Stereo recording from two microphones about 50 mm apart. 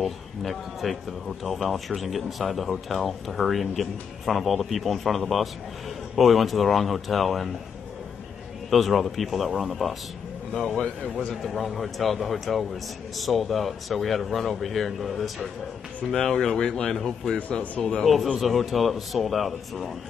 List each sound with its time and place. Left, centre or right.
0.0 s speech: centre
8.6 s speech: centre
11.4 s speech: centre
18.0 s speech: centre